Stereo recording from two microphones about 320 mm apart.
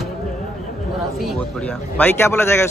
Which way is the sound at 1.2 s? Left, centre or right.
Centre.